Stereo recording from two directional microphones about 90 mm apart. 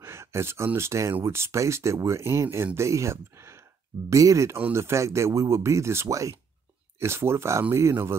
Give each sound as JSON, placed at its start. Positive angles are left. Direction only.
{"t": 0.0, "sound": "a sound", "side_deg": -30}
{"t": 0.7, "sound": "speech", "side_deg": -30}
{"t": 4.6, "sound": "speech", "side_deg": -25}